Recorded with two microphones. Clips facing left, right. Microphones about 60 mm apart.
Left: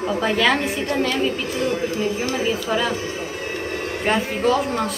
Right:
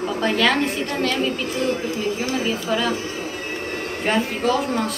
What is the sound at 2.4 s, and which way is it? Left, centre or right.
Speech, centre.